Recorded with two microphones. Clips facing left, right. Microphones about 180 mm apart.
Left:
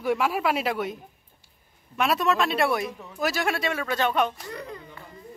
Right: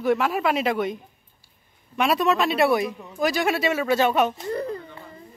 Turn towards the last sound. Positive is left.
turn(degrees=-30)  # may be behind; listen again after turning